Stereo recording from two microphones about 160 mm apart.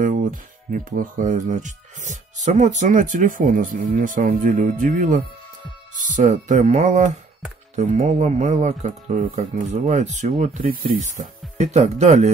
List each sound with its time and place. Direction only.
0.0 s speech: 60° right (ahead or behind)
11.5 s speech: 45° right (ahead or behind)